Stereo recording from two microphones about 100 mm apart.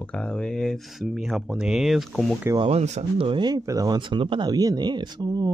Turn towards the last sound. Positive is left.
turn(degrees=-45)  # may be behind; listen again after turning